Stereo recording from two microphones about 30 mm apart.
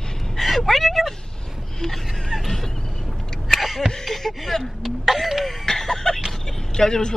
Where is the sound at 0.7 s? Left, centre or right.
Centre.